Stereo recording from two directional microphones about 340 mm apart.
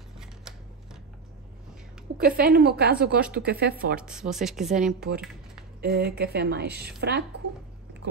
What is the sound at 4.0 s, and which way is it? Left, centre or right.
Speech, centre.